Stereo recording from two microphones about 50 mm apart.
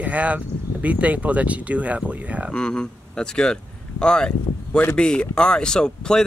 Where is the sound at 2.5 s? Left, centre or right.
Centre.